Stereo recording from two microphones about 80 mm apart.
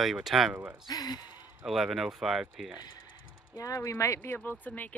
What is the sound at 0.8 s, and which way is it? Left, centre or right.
Speech, left.